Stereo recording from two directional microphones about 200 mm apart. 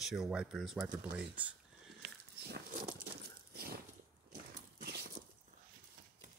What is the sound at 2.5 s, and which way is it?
Dog, 45° right (ahead or behind).